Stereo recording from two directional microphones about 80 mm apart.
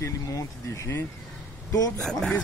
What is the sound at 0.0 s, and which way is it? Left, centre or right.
Speech, left.